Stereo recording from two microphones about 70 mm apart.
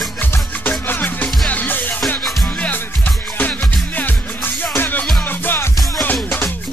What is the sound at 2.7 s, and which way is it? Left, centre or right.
Music, left.